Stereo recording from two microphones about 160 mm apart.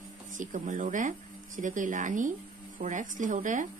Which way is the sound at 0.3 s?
50° right (ahead or behind).